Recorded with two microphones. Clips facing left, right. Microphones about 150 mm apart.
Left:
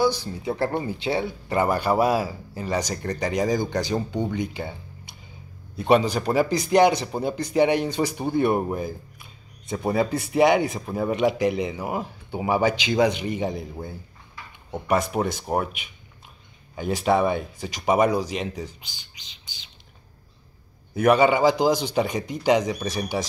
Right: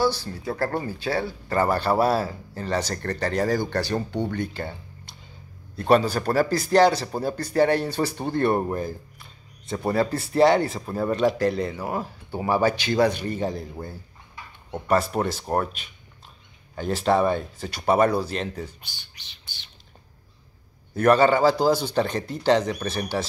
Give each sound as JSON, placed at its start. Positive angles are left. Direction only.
{"t": 0.0, "sound": "speech", "side_deg": 15}
{"t": 5.8, "sound": "speech", "side_deg": 10}
{"t": 20.9, "sound": "speech", "side_deg": 10}